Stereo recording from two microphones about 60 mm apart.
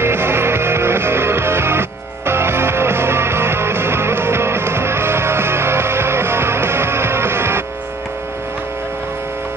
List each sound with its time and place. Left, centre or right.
0.0 s music: right